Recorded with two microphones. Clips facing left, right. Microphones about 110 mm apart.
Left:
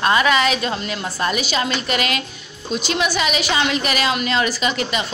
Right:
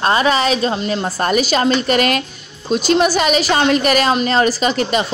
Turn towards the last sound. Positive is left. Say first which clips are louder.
# right 5 dB
turn(degrees=-40)  # may be behind; listen again after turning